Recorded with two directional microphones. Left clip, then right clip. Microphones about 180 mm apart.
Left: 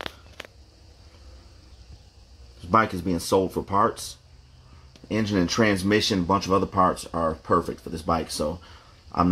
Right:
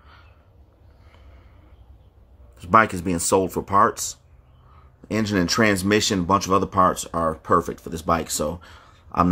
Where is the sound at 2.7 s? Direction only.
15° right (ahead or behind).